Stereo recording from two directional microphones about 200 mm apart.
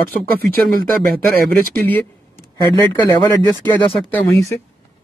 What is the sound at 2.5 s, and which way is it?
Speech, 15° left (ahead or behind).